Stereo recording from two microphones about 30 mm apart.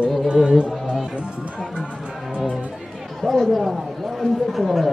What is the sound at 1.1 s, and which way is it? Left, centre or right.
Music, right.